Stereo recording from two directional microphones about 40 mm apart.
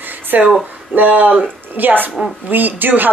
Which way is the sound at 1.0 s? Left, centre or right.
Right.